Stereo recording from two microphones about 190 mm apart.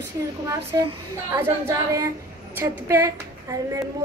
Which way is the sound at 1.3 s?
15° right (ahead or behind).